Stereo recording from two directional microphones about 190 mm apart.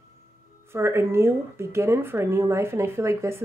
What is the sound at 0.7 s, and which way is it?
Speech, 15° right (ahead or behind).